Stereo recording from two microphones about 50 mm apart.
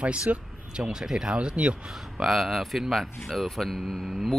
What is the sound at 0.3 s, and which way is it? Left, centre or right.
Speech, right.